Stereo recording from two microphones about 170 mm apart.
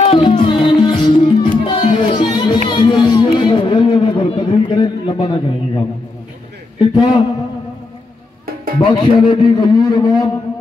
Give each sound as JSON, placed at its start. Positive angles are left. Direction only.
{"t": 0.0, "sound": "music", "side_deg": 30}
{"t": 2.7, "sound": "a sound", "side_deg": 25}
{"t": 6.8, "sound": "a man's voice", "side_deg": 25}
{"t": 8.7, "sound": "a man's voice", "side_deg": 25}